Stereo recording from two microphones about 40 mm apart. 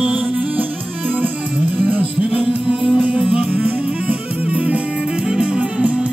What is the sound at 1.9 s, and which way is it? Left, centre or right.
Music, right.